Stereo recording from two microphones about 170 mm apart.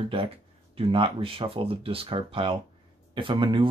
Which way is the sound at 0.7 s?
30° right (ahead or behind).